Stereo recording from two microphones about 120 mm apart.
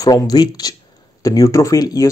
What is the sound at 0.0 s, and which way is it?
Speech, 30° left (ahead or behind).